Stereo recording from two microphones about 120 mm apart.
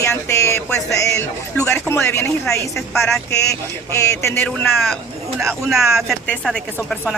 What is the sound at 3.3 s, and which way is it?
Speech, 25° left (ahead or behind).